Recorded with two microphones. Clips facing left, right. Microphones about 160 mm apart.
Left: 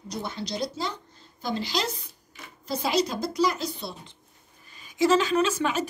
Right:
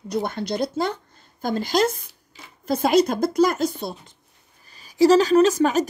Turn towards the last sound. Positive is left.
turn(degrees=-40)  # may be behind; listen again after turning